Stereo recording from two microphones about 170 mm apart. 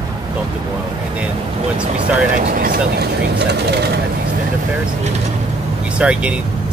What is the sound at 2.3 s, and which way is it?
Speech, 55° right (ahead or behind).